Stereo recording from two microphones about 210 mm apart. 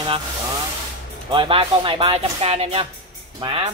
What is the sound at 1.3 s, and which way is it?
Speech, 25° right (ahead or behind).